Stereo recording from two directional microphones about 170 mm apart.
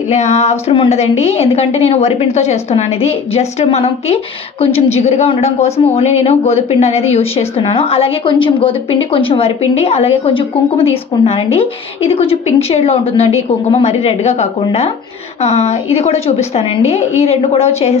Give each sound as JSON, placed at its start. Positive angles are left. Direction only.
{"t": 0.1, "sound": "a woman's voice", "side_deg": 40}